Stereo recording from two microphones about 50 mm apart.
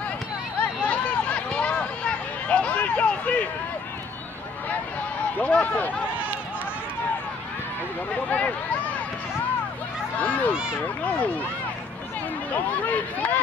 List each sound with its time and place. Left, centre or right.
0.6 s a sound: left
5.4 s speech: left
8.1 s a sound: left
10.1 s speech: left
10.5 s speech: centre
12.5 s speech: left